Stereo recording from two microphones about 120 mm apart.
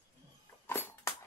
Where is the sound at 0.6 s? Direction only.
20° left (ahead or behind).